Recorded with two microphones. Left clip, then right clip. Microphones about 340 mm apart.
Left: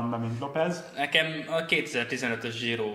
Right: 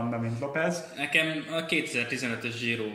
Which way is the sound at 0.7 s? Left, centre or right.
Left.